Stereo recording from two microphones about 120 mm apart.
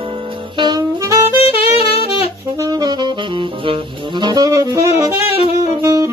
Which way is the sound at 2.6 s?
35° right (ahead or behind).